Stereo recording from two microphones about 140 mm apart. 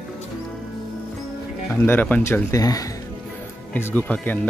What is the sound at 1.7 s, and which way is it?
Speech, 10° left (ahead or behind).